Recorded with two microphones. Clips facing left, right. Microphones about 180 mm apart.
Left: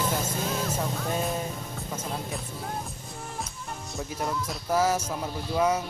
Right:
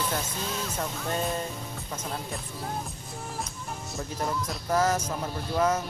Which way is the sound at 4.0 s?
Centre (ahead or behind).